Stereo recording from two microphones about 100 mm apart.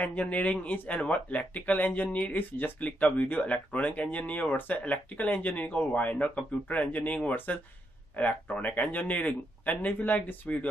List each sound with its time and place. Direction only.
0.0 s speech: 15° left (ahead or behind)